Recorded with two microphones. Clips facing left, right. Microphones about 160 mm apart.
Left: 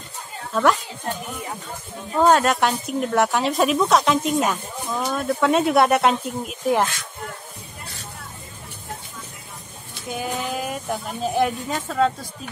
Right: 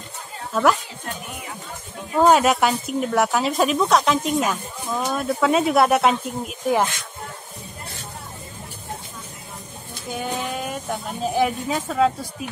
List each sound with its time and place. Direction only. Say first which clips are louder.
0.5 s speech: even; 5° right (ahead or behind)
2.1 s speech: right 1 dB; 10° right (ahead or behind)
10.0 s speech: even; centre (ahead or behind)